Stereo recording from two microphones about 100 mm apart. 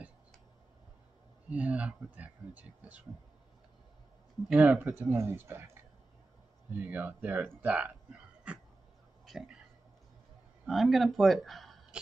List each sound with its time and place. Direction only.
1.5 s speech: 15° right (ahead or behind)
4.5 s speech: 15° right (ahead or behind)
5.1 s speech: 25° right (ahead or behind)
8.5 s a sound: 15° right (ahead or behind)
10.7 s speech: centre (ahead or behind)